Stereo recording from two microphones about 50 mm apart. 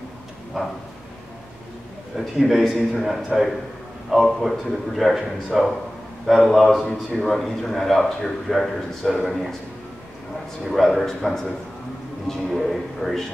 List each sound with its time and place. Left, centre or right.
0.5 s bow-wow: centre
2.1 s a man's voice: centre
10.7 s a man's voice: centre